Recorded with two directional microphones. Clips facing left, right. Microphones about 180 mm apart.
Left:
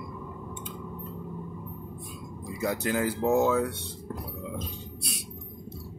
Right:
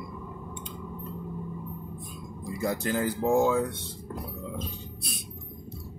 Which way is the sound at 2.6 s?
5° left (ahead or behind).